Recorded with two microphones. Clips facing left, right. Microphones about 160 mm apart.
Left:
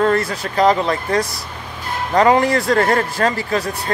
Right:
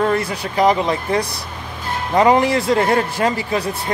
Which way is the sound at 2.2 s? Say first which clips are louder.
Even; 20° right (ahead or behind).